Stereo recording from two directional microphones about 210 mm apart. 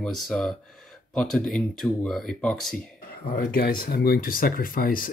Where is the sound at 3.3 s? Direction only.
45° left (ahead or behind).